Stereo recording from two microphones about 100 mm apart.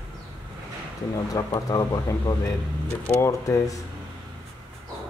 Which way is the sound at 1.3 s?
35° left (ahead or behind).